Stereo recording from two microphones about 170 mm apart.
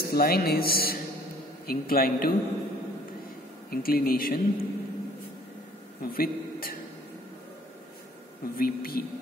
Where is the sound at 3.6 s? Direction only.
60° left (ahead or behind).